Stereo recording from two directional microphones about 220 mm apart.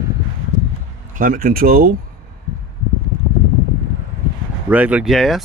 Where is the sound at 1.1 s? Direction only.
40° right (ahead or behind).